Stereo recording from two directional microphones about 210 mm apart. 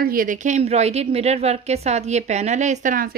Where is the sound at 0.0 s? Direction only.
40° right (ahead or behind).